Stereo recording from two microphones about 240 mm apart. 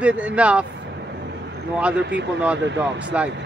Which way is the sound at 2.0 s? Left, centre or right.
Right.